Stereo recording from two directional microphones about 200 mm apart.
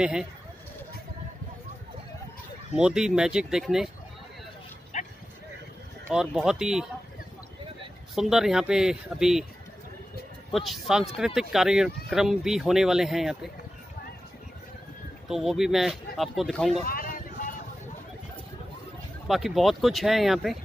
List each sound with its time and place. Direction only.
0.0 s speech: 5° right (ahead or behind)
2.7 s speech: 5° right (ahead or behind)
4.9 s a sound: 35° left (ahead or behind)
6.0 s speech: 5° right (ahead or behind)
8.1 s speech: centre (ahead or behind)
10.5 s speech: centre (ahead or behind)
15.2 s speech: centre (ahead or behind)
16.8 s a sound: 45° left (ahead or behind)
19.2 s speech: centre (ahead or behind)